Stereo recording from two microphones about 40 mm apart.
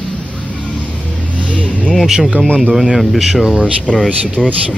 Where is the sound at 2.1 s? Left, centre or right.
Centre.